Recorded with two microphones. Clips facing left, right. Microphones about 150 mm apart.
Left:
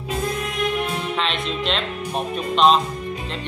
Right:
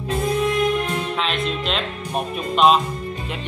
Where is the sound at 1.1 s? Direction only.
Centre (ahead or behind).